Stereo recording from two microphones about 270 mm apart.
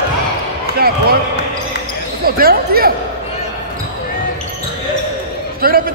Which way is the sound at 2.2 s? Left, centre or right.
Right.